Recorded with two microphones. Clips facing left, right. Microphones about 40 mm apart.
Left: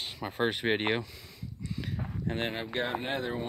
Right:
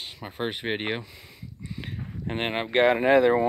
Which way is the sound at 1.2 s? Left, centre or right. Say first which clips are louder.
Even; right.